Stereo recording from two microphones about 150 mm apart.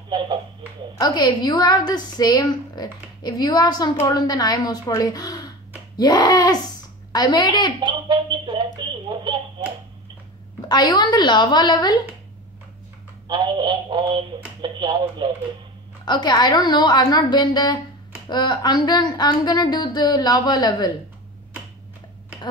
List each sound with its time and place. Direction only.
0.1 s speech: 30° right (ahead or behind)
0.9 s a woman's voice: 25° left (ahead or behind)
7.8 s a sound: 30° right (ahead or behind)
10.7 s a woman's voice: 30° left (ahead or behind)
13.3 s a sound: 30° right (ahead or behind)
14.6 s speech: 30° right (ahead or behind)
16.1 s a woman's voice: 30° left (ahead or behind)